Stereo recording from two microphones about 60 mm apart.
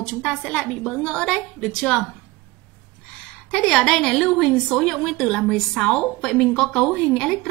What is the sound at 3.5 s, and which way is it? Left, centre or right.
A woman's voice, centre.